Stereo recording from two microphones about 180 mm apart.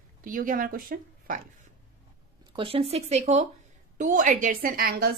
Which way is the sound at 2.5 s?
30° right (ahead or behind).